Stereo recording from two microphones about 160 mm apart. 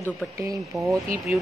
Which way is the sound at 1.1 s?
55° right (ahead or behind).